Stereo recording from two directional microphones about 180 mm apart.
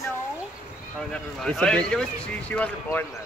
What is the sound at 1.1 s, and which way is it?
Speech, 5° left (ahead or behind).